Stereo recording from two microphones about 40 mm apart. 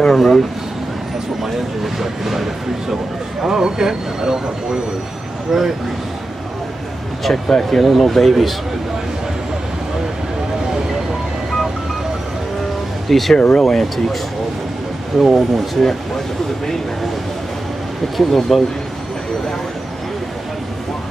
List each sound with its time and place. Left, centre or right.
0.0 s speech: centre
2.0 s speech: centre
5.5 s speech: centre
7.4 s speech: centre
7.8 s speech: centre
13.1 s speech: centre
15.1 s speech: centre
18.1 s speech: centre